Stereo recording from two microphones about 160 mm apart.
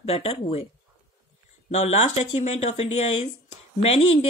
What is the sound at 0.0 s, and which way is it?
Speech, 35° left (ahead or behind).